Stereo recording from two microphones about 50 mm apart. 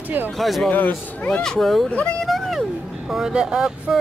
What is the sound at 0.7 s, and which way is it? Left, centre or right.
Speech, left.